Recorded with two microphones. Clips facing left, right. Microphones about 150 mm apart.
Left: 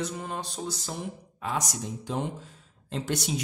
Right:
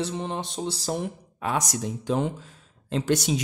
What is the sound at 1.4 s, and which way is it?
Speech, 70° right (ahead or behind).